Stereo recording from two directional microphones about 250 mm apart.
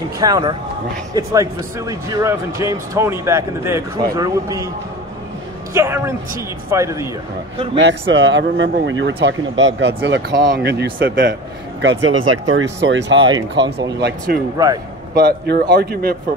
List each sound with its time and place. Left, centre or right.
0.2 s speech: centre
5.7 s a man's voice: centre
8.1 s speech: right
14.0 s a man's voice: right